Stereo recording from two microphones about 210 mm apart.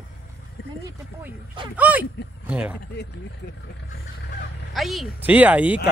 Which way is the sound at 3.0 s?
50° left (ahead or behind).